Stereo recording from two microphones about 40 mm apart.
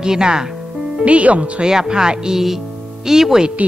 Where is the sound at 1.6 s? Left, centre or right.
Centre.